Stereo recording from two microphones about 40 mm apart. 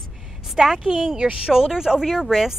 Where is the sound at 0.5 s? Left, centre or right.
Centre.